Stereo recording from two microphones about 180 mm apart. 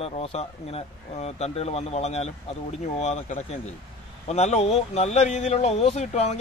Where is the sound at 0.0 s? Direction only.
35° left (ahead or behind).